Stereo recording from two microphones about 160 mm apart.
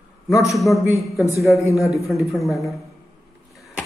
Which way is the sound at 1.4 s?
20° left (ahead or behind).